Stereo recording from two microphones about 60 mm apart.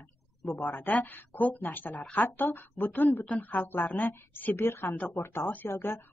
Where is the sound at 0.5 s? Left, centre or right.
Left.